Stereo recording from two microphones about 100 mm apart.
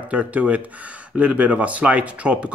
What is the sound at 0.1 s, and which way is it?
Speech, 15° right (ahead or behind).